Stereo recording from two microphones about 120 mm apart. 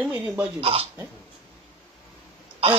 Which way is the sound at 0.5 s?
55° right (ahead or behind).